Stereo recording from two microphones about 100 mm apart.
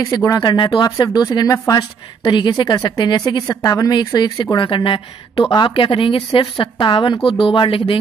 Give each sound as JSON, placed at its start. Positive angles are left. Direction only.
{"t": 0.0, "sound": "a woman's voice", "side_deg": 40}
{"t": 4.0, "sound": "speech", "side_deg": 45}